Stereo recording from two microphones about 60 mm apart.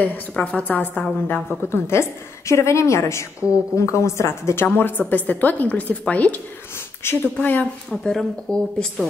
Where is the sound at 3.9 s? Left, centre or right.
Left.